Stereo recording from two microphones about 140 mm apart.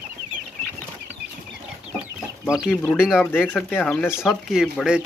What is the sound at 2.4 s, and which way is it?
Speech, 5° right (ahead or behind).